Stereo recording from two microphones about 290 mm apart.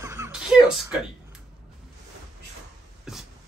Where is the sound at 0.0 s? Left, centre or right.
Centre.